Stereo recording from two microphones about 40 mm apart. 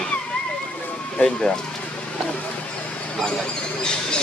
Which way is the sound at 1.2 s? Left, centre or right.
Centre.